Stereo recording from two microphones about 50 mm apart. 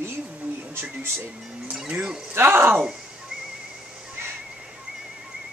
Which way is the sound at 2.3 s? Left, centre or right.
Right.